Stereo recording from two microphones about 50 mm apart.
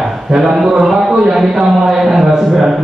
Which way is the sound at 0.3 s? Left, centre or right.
Centre.